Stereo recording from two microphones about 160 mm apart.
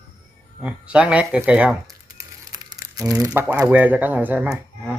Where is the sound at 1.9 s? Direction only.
20° right (ahead or behind).